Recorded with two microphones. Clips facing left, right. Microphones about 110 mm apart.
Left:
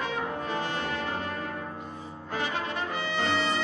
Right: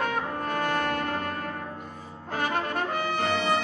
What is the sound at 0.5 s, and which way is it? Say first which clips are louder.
Brass instrument: right 7 dB; 55° right (ahead or behind).